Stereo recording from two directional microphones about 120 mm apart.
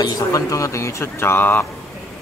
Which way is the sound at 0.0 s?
30° left (ahead or behind).